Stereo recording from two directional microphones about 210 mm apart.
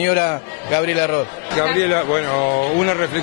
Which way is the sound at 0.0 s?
15° left (ahead or behind).